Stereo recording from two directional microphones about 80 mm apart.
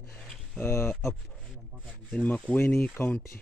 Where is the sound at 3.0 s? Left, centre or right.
Left.